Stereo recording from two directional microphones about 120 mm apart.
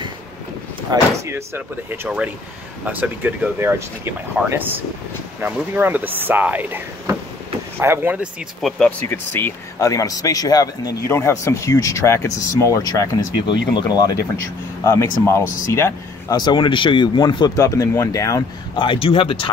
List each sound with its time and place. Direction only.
0.9 s speech: 35° right (ahead or behind)
1.2 s speech: 20° right (ahead or behind)
8.5 s speech: 5° left (ahead or behind)
9.0 s speech: 20° left (ahead or behind)
14.9 s speech: 25° left (ahead or behind)
16.3 s speech: 40° left (ahead or behind)
18.8 s speech: 45° left (ahead or behind)